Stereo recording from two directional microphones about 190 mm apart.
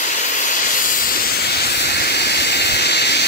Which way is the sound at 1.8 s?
60° left (ahead or behind).